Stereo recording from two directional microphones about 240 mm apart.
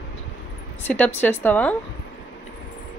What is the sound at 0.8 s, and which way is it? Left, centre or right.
Speech, centre.